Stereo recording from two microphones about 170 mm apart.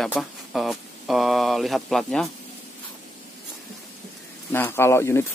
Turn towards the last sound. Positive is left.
turn(degrees=15)  # may be behind; listen again after turning